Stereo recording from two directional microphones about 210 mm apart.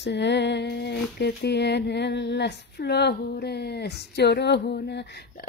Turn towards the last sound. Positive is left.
turn(degrees=50)  # may be behind; listen again after turning